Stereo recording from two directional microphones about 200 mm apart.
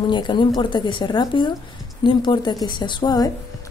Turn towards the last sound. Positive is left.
turn(degrees=20)  # may be behind; listen again after turning